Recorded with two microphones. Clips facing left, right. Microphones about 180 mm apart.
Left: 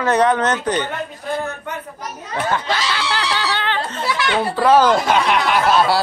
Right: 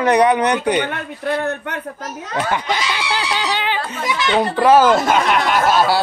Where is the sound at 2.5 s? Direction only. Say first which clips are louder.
Even; 15° right (ahead or behind).